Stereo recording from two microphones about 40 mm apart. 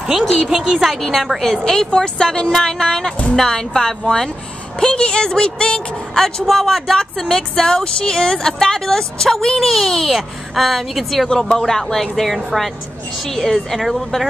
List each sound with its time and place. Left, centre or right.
0.5 s a woman's voice: centre
1.4 s speech: centre
6.4 s speech: centre
9.6 s a woman's voice: centre